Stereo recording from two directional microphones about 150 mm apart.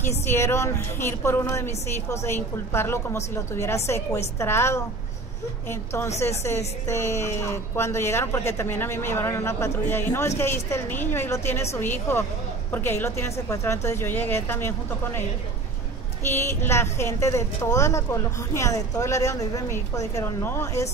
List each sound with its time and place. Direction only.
0.0 s a woman's voice: 15° left (ahead or behind)
16.3 s a woman's voice: 15° left (ahead or behind)